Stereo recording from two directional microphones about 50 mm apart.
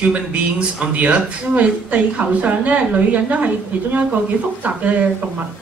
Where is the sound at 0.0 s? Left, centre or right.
Right.